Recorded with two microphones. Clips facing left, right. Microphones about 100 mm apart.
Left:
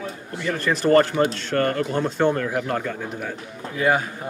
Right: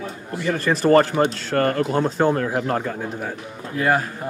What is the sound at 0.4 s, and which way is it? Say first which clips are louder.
Speech: right 3 dB; 30° right (ahead or behind).